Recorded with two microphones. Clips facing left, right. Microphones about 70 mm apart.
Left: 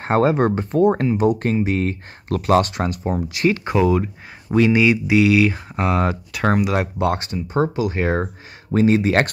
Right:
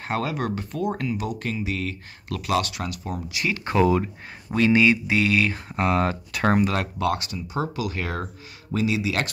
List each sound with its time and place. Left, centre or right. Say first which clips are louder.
0.0 s speech: left 10 dB; left
3.7 s speech: right 2 dB; centre
4.5 s speech: left 3 dB; centre
6.7 s speech: left 5 dB; centre
7.1 s speech: left 3 dB; left
8.7 s speech: left 8 dB; left